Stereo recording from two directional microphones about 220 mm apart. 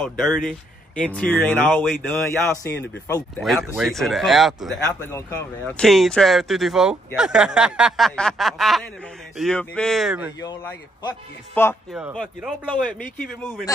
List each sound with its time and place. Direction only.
0.0 s speech: centre (ahead or behind)
3.3 s speech: centre (ahead or behind)
5.0 s speech: 10° left (ahead or behind)
10.4 s speech: 20° left (ahead or behind)